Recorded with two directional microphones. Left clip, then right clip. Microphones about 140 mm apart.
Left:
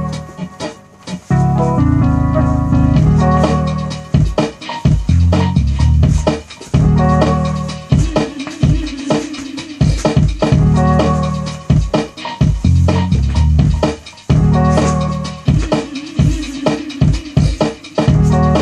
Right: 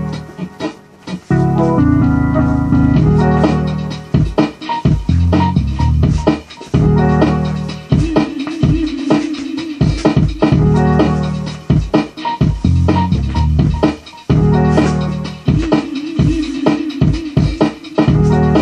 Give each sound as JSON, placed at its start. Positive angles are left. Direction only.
{"t": 1.3, "sound": "music", "side_deg": 40}